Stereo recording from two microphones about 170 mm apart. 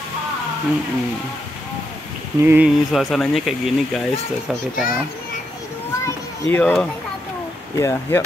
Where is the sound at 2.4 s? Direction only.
10° right (ahead or behind).